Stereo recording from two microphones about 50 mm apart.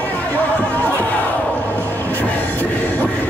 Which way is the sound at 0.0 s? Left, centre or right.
Left.